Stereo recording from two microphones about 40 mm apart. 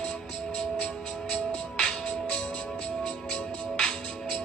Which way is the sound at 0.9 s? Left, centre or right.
Left.